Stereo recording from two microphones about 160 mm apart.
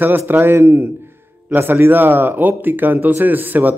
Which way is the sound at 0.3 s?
15° right (ahead or behind).